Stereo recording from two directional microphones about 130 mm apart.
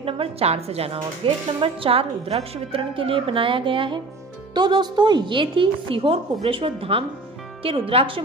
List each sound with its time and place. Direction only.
0.0 s a woman's voice: 50° right (ahead or behind)